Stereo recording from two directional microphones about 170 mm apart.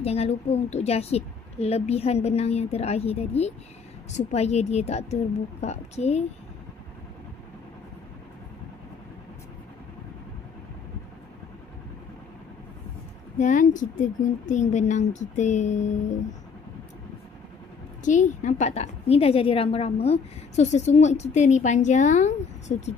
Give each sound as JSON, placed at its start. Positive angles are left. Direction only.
{"t": 0.0, "sound": "a woman's voice", "side_deg": 35}
{"t": 13.4, "sound": "a woman's voice", "side_deg": 50}
{"t": 18.0, "sound": "a woman's voice", "side_deg": 45}